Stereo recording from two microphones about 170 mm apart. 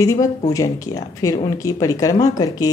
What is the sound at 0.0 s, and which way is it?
Speech, 20° left (ahead or behind).